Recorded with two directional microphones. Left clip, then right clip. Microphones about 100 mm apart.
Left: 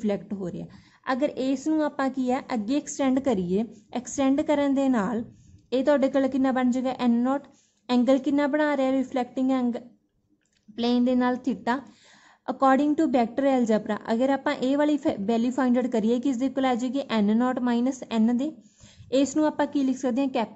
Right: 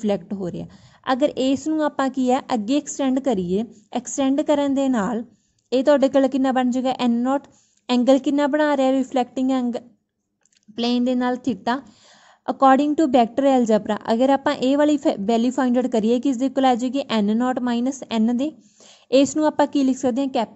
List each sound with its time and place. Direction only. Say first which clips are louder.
0.0 s a woman's voice: right 5 dB; 45° right (ahead or behind)
19.5 s a woman's voice: right 6 dB; 50° right (ahead or behind)